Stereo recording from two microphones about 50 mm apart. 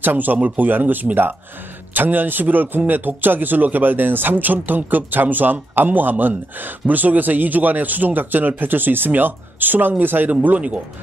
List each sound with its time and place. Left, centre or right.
0.0 s speech: right
10.4 s speech: right